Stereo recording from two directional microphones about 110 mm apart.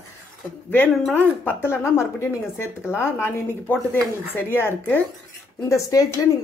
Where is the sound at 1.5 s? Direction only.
20° left (ahead or behind).